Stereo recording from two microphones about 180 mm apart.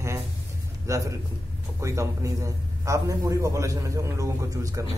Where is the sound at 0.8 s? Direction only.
15° right (ahead or behind).